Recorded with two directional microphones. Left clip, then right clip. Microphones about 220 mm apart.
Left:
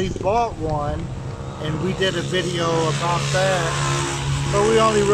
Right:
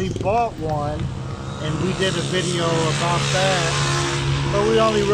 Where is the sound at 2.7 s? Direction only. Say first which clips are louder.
Left 1 dB; 40° right (ahead or behind); by 4.0 s 10° right (ahead or behind).